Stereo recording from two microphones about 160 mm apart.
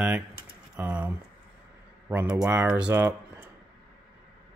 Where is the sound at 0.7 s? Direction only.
10° right (ahead or behind).